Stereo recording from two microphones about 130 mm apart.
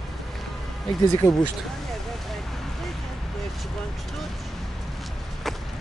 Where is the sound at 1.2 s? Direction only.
30° left (ahead or behind).